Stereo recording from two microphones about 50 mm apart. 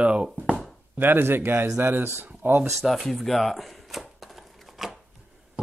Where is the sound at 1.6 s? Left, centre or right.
Right.